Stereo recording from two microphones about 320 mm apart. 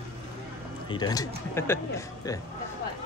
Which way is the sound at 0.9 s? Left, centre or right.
Centre.